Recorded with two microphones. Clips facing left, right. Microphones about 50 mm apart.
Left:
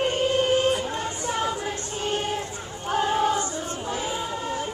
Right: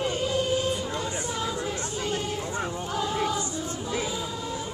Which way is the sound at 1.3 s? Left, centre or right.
Left.